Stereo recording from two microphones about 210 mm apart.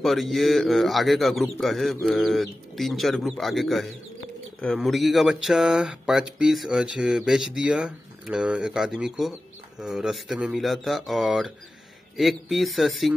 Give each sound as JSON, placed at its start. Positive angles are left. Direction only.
{"t": 0.0, "sound": "speech", "side_deg": 0}